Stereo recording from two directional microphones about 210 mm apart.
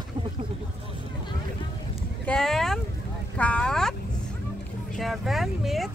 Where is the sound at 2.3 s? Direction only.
Centre (ahead or behind).